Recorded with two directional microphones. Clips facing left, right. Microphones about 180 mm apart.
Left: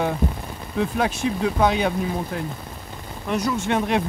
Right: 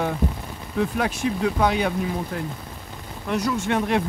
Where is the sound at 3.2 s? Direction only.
20° left (ahead or behind).